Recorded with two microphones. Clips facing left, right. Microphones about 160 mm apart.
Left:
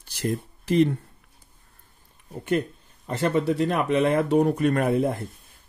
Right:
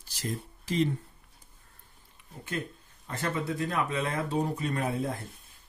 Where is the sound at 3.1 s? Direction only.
70° left (ahead or behind).